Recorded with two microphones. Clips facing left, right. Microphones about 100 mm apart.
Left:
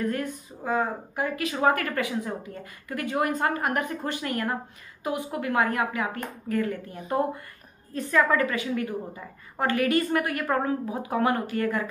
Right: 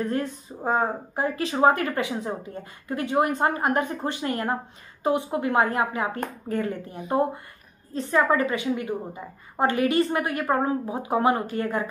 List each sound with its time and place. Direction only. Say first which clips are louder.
0.0 s a woman's voice: right 2 dB; 30° right (ahead or behind)